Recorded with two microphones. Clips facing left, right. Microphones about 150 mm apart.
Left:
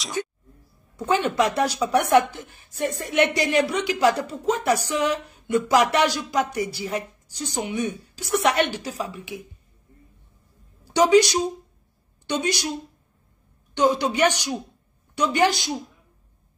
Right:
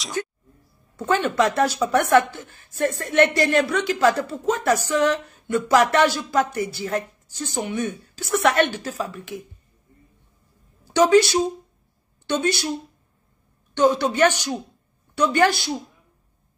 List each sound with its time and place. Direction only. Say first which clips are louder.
0.9 s a woman's voice: right 1 dB; 15° left (ahead or behind)
11.0 s a woman's voice: right 1 dB; 15° left (ahead or behind)
13.7 s a woman's voice: right 2 dB; 15° left (ahead or behind)